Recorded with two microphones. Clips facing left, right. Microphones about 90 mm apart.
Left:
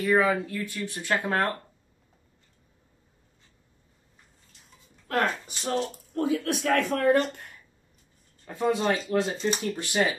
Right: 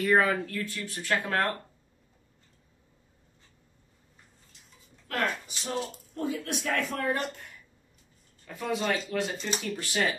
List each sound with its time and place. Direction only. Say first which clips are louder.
0.0 s speech: left 1 dB; centre (ahead or behind)
0.6 s speech: left 2 dB; 20° left (ahead or behind)
5.0 s speech: left 4 dB; 35° left (ahead or behind)
6.1 s speech: left 6 dB; 90° left
6.8 s speech: left 5 dB; centre (ahead or behind)
7.1 s speech: left 12 dB; 85° left
8.5 s speech: left 5 dB; 30° left (ahead or behind)
9.8 s speech: left 4 dB; 20° left (ahead or behind)